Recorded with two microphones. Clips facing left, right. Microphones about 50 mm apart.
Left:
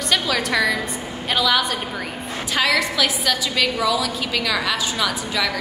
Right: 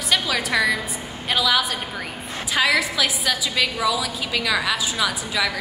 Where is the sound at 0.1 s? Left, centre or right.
Centre.